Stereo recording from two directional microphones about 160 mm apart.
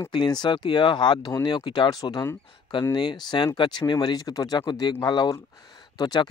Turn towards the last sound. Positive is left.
turn(degrees=25)  # may be behind; listen again after turning